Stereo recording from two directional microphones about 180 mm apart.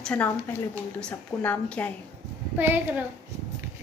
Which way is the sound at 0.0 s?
10° left (ahead or behind).